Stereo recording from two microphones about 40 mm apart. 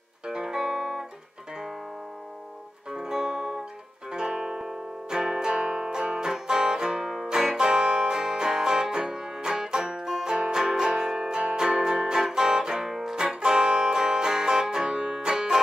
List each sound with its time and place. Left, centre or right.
0.3 s music: centre
2.9 s music: centre
10.3 s music: right